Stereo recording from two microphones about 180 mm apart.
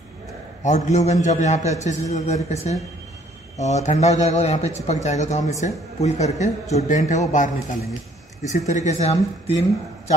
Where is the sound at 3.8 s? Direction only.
40° left (ahead or behind).